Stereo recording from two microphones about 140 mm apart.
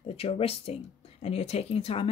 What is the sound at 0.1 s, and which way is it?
Speech, 45° left (ahead or behind).